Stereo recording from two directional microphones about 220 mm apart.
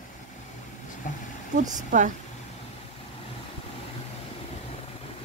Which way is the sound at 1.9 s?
35° right (ahead or behind).